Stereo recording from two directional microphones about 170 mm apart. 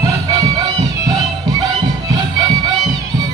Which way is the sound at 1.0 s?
25° right (ahead or behind).